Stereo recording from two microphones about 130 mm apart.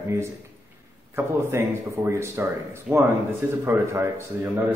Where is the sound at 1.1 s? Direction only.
20° right (ahead or behind).